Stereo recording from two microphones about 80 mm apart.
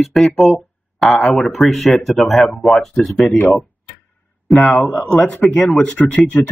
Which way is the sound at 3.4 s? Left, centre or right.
Left.